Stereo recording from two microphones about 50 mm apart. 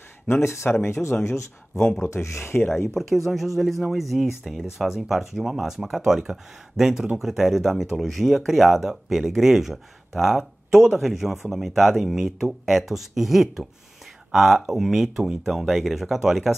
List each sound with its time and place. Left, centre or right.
0.4 s speech: left
0.8 s speech: left
2.9 s speech: centre